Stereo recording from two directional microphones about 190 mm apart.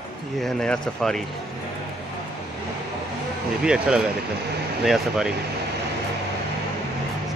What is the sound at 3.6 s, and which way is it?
Speech, 5° right (ahead or behind).